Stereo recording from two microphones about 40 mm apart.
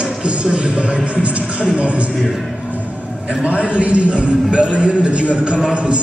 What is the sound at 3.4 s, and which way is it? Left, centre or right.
A man's voice, right.